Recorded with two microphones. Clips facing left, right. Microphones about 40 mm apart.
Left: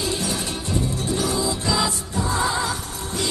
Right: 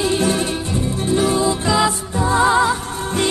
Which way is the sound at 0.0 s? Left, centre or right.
Right.